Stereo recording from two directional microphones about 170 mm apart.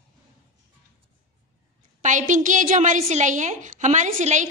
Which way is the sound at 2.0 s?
50° right (ahead or behind).